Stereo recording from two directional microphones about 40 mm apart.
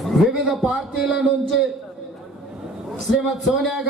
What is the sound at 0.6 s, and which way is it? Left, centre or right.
Speech, right.